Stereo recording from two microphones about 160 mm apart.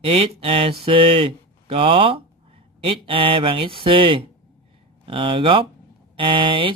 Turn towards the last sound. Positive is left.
turn(degrees=-35)  # may be behind; listen again after turning